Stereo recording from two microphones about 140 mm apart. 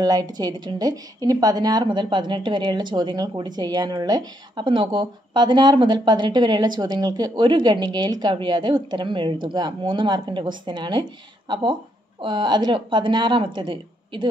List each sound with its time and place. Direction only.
0.0 s a woman's voice: 25° right (ahead or behind)